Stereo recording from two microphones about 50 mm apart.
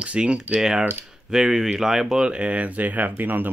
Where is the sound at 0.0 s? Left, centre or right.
Right.